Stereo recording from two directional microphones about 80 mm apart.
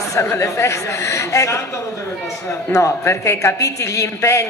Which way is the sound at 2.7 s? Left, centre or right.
Left.